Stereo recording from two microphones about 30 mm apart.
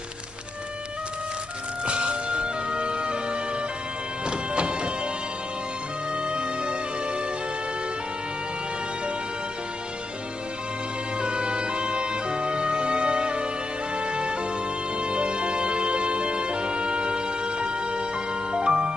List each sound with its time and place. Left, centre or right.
1.9 s music: right
6.1 s music: right
11.1 s music: right